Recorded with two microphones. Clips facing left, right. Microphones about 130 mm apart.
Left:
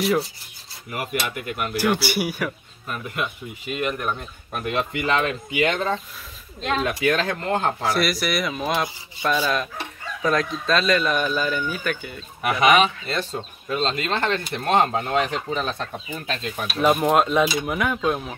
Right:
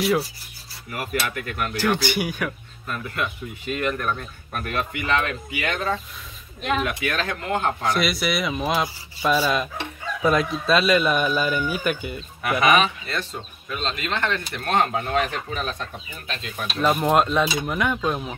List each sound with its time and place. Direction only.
0.9 s speech: 15° left (ahead or behind); by 7.9 s 30° left (ahead or behind)
7.9 s speech: centre (ahead or behind)
12.4 s speech: 20° left (ahead or behind)
16.8 s speech: centre (ahead or behind)